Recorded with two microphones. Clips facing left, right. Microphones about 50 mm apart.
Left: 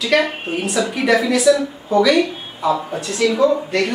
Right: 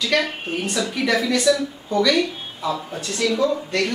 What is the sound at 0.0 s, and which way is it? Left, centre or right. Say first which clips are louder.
A woman's voice: left 4 dB; centre.